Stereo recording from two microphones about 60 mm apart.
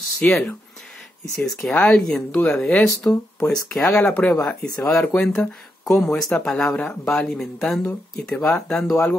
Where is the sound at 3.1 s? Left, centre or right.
Left.